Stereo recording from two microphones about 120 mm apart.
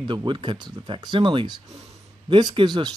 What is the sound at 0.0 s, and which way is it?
Speech, 40° right (ahead or behind).